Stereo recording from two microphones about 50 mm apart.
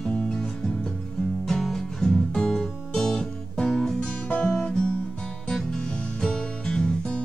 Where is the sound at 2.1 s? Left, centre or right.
Centre.